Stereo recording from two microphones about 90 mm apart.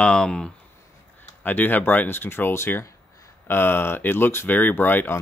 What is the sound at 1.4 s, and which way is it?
Speech, 20° left (ahead or behind).